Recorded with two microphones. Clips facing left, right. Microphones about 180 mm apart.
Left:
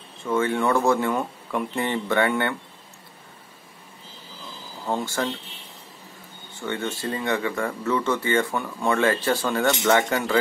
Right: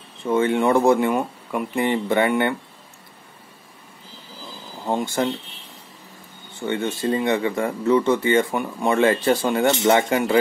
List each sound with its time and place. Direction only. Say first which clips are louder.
0.2 s speech: right 4 dB; 20° right (ahead or behind)
4.8 s speech: right 4 dB; 20° right (ahead or behind)
6.6 s speech: right 5 dB; 20° right (ahead or behind)